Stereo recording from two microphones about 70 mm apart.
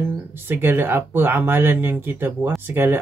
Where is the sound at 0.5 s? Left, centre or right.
Right.